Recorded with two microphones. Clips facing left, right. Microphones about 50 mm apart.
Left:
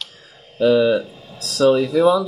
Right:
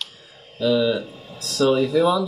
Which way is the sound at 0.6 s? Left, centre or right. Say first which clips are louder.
Left 5 dB; left.